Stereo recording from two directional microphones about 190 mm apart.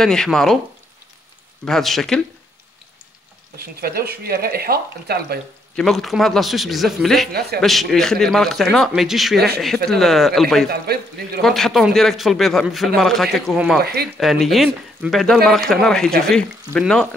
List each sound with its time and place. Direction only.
0.0 s speech: 5° left (ahead or behind)
1.6 s speech: centre (ahead or behind)
3.5 s speech: 55° right (ahead or behind)
5.8 s speech: centre (ahead or behind)
10.7 s speech: 55° right (ahead or behind)
11.4 s speech: centre (ahead or behind)